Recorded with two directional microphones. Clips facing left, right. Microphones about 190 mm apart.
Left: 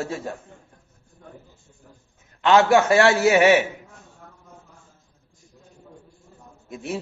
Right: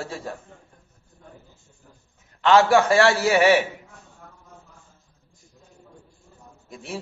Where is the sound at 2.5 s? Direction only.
20° left (ahead or behind).